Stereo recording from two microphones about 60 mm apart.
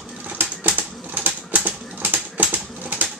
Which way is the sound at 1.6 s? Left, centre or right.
Right.